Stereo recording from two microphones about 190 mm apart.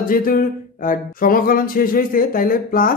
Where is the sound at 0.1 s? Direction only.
50° left (ahead or behind).